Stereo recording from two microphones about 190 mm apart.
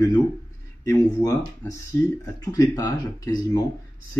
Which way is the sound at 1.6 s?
10° left (ahead or behind).